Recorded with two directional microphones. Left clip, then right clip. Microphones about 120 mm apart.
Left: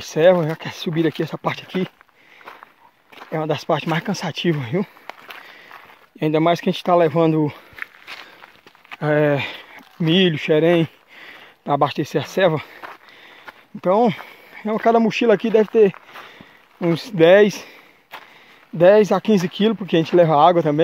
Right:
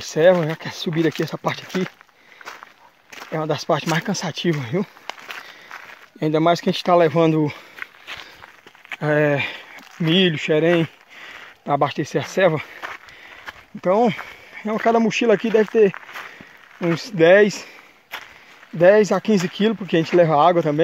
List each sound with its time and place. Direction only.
0.0 s speech: 25° left (ahead or behind)
0.9 s speech: 10° left (ahead or behind)
1.3 s speech: 20° left (ahead or behind)
3.3 s speech: 25° left (ahead or behind)
6.1 s speech: 25° left (ahead or behind)
8.2 s walk: 5° left (ahead or behind)
9.0 s speech: 25° left (ahead or behind)
13.7 s speech: 30° left (ahead or behind)
17.0 s speech: 40° left (ahead or behind)
18.8 s speech: 35° left (ahead or behind)